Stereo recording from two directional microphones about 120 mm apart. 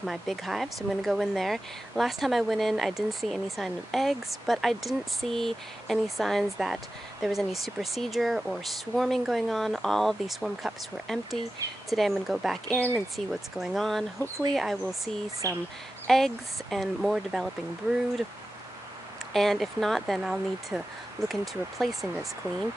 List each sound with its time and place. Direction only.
0.0 s speech: centre (ahead or behind)
15.4 s speech: 25° right (ahead or behind)
16.1 s speech: centre (ahead or behind)
19.3 s speech: centre (ahead or behind)